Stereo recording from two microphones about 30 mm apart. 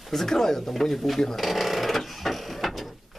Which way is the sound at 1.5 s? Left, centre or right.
Centre.